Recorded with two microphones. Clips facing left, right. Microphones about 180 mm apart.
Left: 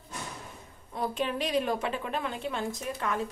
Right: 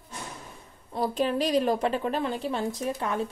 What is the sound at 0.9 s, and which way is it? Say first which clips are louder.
A woman's voice: right 5 dB; 35° right (ahead or behind).